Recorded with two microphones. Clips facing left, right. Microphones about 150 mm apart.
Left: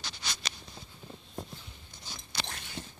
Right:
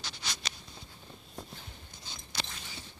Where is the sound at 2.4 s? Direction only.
60° left (ahead or behind).